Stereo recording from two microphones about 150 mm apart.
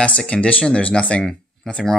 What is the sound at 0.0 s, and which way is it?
Speech, 10° left (ahead or behind).